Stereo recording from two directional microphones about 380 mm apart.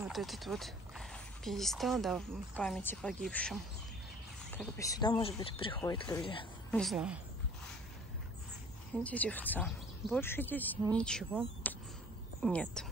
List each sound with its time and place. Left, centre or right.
0.0 s speech: centre
6.8 s speech: centre
9.0 s speech: centre